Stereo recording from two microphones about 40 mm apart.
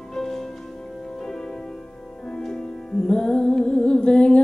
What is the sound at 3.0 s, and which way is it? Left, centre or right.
Music, left.